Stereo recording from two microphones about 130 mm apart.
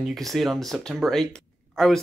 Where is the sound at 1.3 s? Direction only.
5° left (ahead or behind).